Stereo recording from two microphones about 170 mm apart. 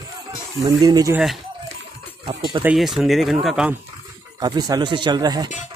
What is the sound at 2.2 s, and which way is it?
Speech, 30° right (ahead or behind).